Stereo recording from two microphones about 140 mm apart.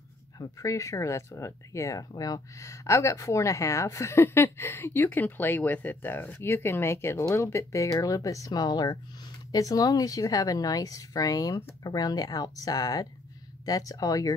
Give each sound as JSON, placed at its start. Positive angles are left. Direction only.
{"t": 0.4, "sound": "speech", "side_deg": 25}